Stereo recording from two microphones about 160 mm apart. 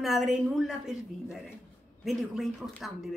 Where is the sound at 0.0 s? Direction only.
Centre (ahead or behind).